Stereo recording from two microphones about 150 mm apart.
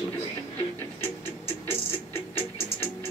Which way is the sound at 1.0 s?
15° left (ahead or behind).